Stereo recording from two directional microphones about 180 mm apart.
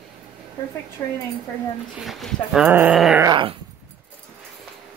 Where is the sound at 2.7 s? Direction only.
10° right (ahead or behind).